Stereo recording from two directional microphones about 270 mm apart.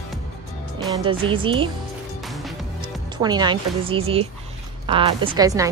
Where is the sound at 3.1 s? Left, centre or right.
Centre.